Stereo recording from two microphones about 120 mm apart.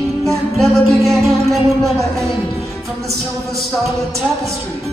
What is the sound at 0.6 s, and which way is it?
Music, centre (ahead or behind).